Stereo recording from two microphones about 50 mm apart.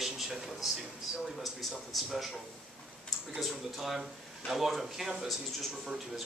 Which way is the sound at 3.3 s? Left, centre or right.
Centre.